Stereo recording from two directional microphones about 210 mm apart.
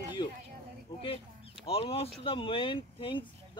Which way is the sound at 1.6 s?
25° left (ahead or behind).